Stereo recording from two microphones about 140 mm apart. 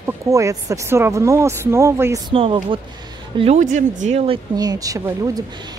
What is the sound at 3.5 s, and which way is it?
Speech, 60° right (ahead or behind).